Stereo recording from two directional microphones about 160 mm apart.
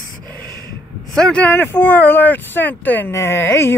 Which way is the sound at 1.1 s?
5° left (ahead or behind).